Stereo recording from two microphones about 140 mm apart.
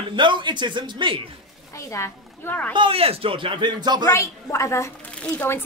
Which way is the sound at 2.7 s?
40° right (ahead or behind).